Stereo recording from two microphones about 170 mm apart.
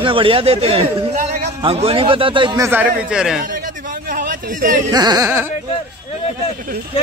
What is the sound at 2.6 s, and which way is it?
Speech, 10° right (ahead or behind).